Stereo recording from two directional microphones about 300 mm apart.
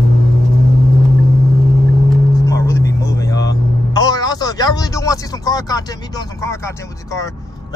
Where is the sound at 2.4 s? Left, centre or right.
Centre.